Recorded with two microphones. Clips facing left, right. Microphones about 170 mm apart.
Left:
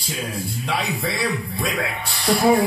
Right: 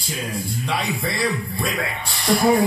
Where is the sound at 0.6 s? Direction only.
Centre (ahead or behind).